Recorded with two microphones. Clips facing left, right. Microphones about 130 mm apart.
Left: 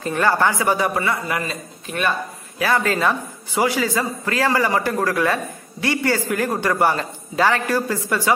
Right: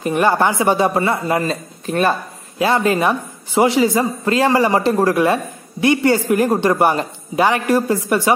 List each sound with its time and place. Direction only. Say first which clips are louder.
0.0 s speech: right 3 dB; 20° right (ahead or behind); by 2.1 s 35° right (ahead or behind)
2.6 s speech: right 4 dB; 20° right (ahead or behind)